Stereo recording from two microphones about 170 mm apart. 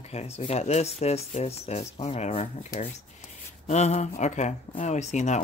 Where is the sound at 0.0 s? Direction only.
40° left (ahead or behind).